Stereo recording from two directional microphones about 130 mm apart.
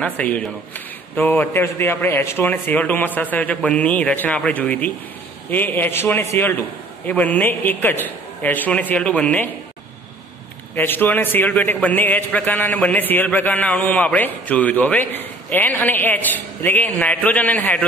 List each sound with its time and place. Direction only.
0.0 s a man's voice: 10° left (ahead or behind)
10.8 s a man's voice: 15° left (ahead or behind)